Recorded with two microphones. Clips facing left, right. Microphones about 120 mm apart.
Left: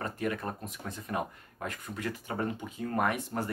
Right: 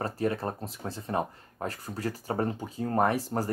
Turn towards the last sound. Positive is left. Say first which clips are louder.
# right 4 dB
turn(degrees=-35)  # may be behind; listen again after turning